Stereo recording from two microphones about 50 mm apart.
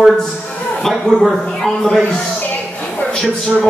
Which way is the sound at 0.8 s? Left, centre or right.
Centre.